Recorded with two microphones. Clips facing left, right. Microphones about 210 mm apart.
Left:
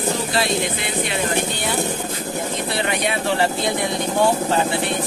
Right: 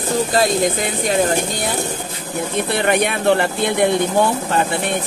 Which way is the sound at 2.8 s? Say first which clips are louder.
Right 5 dB; 55° right (ahead or behind).